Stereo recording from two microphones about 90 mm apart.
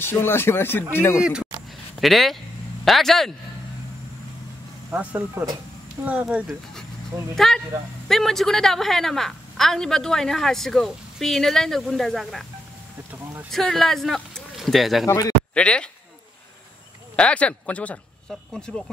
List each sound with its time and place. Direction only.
0.0 s speech: 25° left (ahead or behind)
1.2 s speech: 10° right (ahead or behind)
2.0 s a woman's voice: centre (ahead or behind)
4.9 s speech: 15° right (ahead or behind)
5.3 s speech: 40° right (ahead or behind)
6.2 s a woman's voice: centre (ahead or behind)
13.1 s a sound: 15° right (ahead or behind)
13.5 s speech: 5° left (ahead or behind)
15.0 s a man's voice: 40° left (ahead or behind)
15.5 s speech: 10° left (ahead or behind)
17.1 s a woman's voice: 15° left (ahead or behind)